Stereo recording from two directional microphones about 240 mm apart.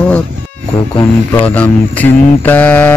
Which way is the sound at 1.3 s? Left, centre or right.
Centre.